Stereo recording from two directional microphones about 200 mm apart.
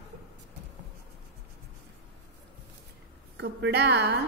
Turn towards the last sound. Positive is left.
turn(degrees=-55)  # may be behind; listen again after turning